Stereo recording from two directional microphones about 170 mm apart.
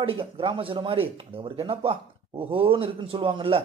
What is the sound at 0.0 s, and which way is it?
Speech, 30° right (ahead or behind).